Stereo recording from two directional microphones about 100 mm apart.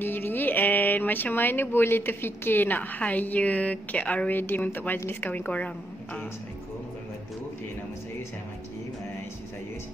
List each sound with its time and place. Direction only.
0.0 s speech: 20° left (ahead or behind)